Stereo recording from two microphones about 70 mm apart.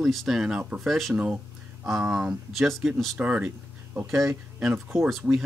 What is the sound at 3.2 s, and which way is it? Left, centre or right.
Speech, centre.